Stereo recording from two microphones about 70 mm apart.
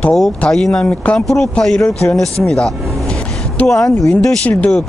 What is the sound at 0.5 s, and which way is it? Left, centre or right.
Speech, centre.